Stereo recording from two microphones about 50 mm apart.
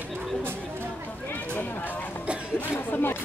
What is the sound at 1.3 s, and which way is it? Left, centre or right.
Chatter, left.